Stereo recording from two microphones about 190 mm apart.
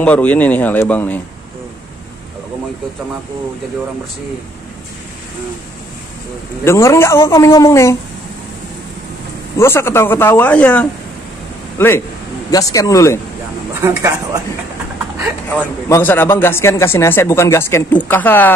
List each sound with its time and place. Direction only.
0.0 s speech: 5° left (ahead or behind)
6.6 s speech: 15° left (ahead or behind)
9.6 s speech: 15° left (ahead or behind)
12.4 s speech: 20° left (ahead or behind)
13.7 s speech: 15° right (ahead or behind)
15.5 s speech: 10° left (ahead or behind)